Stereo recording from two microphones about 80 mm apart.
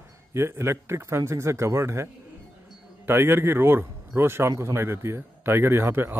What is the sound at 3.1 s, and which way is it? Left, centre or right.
A man's voice, right.